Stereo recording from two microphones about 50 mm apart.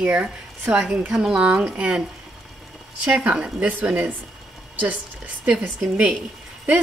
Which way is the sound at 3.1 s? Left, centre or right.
Right.